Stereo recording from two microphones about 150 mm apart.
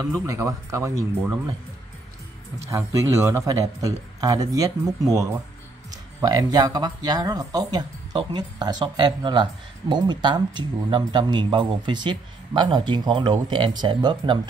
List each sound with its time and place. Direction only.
0.0 s speech: 20° right (ahead or behind)
2.7 s speech: 20° right (ahead or behind)